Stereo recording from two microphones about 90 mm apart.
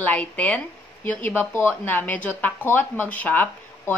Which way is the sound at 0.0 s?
20° left (ahead or behind).